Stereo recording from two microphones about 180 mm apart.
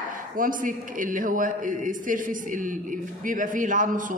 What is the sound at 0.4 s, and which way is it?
A man's voice, 50° right (ahead or behind).